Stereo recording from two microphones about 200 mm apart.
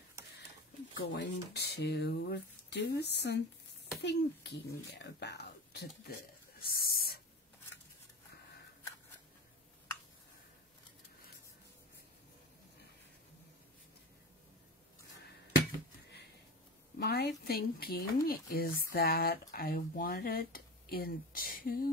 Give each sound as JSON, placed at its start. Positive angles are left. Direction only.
{"t": 0.9, "sound": "speech", "side_deg": 60}
{"t": 6.6, "sound": "owl", "side_deg": 50}
{"t": 17.0, "sound": "speech", "side_deg": 55}